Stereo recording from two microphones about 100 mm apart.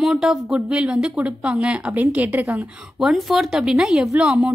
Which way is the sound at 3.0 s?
Centre (ahead or behind).